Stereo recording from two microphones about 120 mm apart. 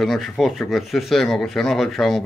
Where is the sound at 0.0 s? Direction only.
Centre (ahead or behind).